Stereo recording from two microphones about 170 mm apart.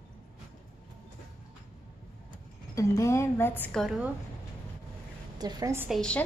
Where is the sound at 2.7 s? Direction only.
15° left (ahead or behind).